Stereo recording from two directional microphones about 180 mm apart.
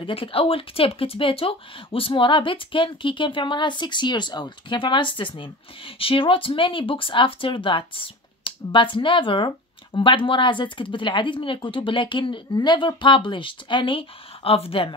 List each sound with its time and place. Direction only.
0.0 s speech: 30° left (ahead or behind)